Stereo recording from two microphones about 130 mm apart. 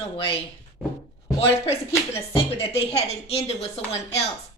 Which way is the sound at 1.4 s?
50° left (ahead or behind).